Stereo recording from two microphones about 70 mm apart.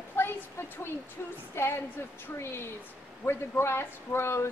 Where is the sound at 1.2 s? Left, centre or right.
Left.